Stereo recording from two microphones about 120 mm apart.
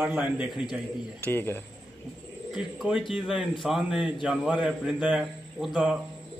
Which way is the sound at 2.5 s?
5° right (ahead or behind).